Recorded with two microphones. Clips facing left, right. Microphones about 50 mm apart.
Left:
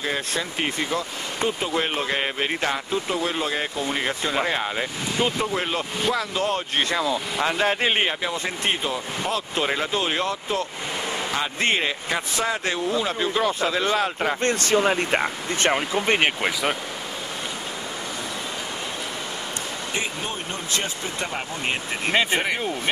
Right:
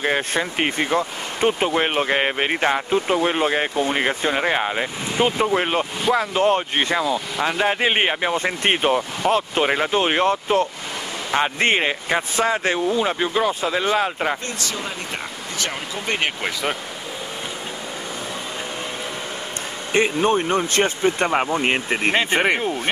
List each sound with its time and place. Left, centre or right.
0.0 s speech: right
7.3 s speech: centre
8.0 s speech: right
9.2 s speech: right; by 14.4 s centre
14.4 s speech: left
16.2 s speech: centre
19.9 s speech: right